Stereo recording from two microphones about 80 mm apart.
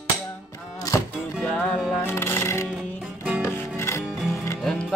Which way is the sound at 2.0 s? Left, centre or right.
Left.